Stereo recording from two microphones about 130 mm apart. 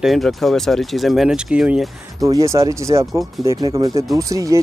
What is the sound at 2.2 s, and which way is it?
Speech, 25° right (ahead or behind).